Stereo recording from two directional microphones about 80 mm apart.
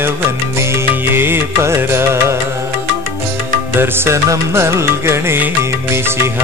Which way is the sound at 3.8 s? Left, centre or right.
Right.